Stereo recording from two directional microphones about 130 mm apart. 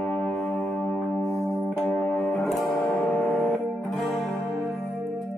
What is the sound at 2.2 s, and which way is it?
Music, 10° left (ahead or behind).